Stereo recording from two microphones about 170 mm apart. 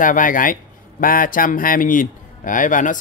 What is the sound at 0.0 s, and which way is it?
Speech, 50° left (ahead or behind).